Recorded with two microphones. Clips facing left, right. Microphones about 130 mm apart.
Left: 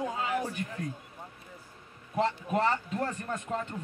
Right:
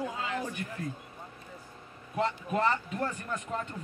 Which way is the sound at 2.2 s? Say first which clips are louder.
Left 1 dB; 35° left (ahead or behind).